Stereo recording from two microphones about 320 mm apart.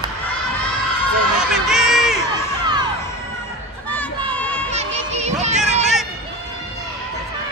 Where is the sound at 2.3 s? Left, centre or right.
Centre.